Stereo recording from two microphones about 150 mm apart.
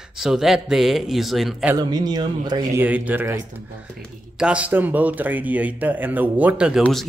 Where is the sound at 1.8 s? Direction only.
30° right (ahead or behind).